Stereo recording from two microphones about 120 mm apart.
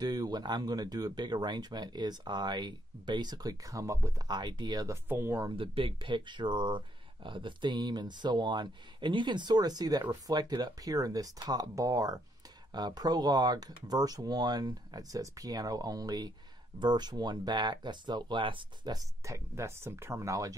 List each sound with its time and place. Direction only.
0.0 s speech: 35° right (ahead or behind)
4.3 s speech: 35° right (ahead or behind)
5.0 s speech: 20° right (ahead or behind)
5.5 s speech: 50° right (ahead or behind)
18.9 s speech: 25° right (ahead or behind)